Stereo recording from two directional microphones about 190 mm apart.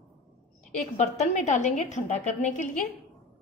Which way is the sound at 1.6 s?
40° left (ahead or behind).